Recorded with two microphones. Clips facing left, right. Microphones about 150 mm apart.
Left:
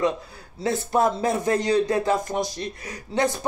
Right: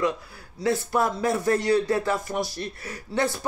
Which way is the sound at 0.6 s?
20° left (ahead or behind).